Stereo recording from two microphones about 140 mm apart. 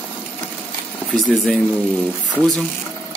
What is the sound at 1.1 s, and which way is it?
Speech, 5° left (ahead or behind).